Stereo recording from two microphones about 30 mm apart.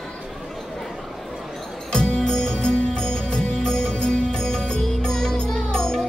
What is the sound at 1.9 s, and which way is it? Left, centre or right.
Music, left.